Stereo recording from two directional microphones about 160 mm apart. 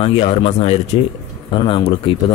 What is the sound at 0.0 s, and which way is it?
Speech, 40° left (ahead or behind).